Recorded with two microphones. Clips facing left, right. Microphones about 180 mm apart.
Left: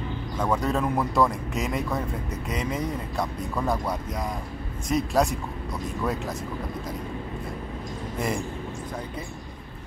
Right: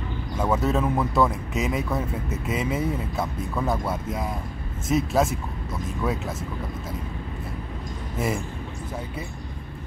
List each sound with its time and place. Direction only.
0.4 s speech: 5° right (ahead or behind)
8.2 s speech: 5° right (ahead or behind)